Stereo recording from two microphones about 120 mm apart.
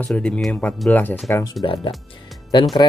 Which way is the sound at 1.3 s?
30° left (ahead or behind).